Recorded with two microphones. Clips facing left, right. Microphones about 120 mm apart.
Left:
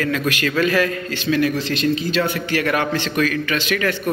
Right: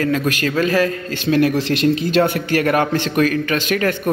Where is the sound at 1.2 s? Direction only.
55° right (ahead or behind).